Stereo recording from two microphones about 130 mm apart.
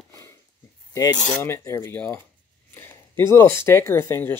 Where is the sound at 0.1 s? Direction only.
20° left (ahead or behind).